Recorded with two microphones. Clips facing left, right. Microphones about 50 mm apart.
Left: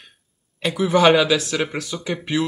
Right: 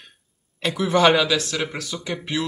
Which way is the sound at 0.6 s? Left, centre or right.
Centre.